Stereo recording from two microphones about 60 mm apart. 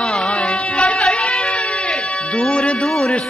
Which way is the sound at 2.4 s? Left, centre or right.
Centre.